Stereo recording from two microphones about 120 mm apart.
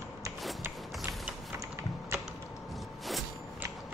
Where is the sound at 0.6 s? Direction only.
25° right (ahead or behind).